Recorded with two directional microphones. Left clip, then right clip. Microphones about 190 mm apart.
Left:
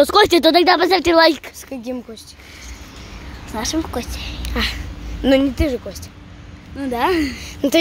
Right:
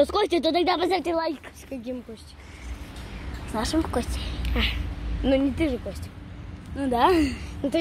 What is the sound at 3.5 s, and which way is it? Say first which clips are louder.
Speech: left 3 dB; centre (ahead or behind).